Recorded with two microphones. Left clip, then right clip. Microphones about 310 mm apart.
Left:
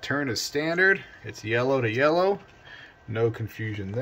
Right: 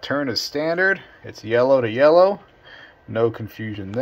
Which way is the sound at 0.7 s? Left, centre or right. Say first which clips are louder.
Even; centre.